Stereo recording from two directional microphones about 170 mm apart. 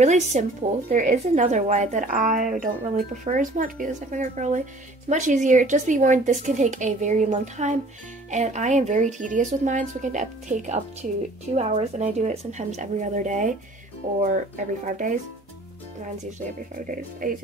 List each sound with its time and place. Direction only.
0.0 s speech: 45° right (ahead or behind)
14.9 s speech: 50° right (ahead or behind)
16.8 s speech: 55° right (ahead or behind)